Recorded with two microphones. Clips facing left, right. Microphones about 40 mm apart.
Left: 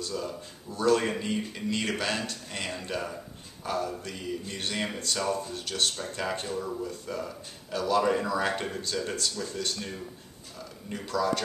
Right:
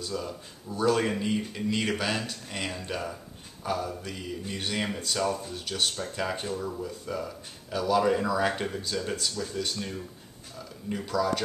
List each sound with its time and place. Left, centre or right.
0.0 s speech: centre
10.9 s speech: centre